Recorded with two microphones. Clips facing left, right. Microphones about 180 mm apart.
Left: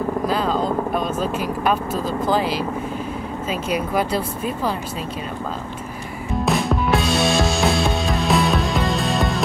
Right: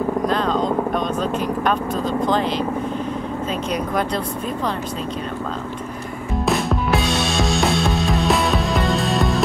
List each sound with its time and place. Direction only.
0.3 s vehicle: 5° left (ahead or behind)
3.7 s speech: 5° left (ahead or behind)
6.4 s music: centre (ahead or behind)